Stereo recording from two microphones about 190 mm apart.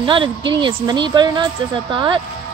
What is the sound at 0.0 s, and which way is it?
Speech, 25° right (ahead or behind).